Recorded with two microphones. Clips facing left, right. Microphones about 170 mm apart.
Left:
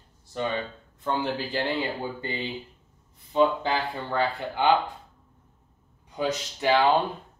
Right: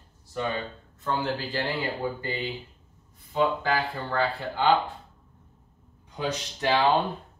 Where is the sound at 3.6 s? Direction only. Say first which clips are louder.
Even; 20° left (ahead or behind).